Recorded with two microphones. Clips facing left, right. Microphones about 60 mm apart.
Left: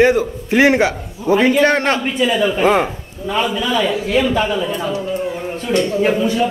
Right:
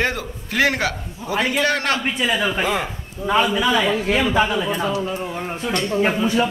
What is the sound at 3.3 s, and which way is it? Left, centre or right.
Speech, centre.